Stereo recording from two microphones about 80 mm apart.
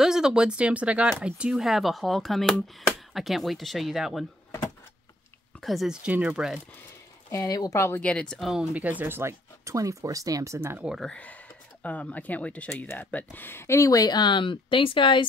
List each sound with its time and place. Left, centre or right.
0.0 s speech: centre
5.6 s speech: centre
5.9 s speech: centre
7.4 s speech: left
7.7 s speech: left
8.0 s speech: centre
8.4 s speech: centre
8.7 s speech: right
11.8 s speech: centre; by 15.2 s left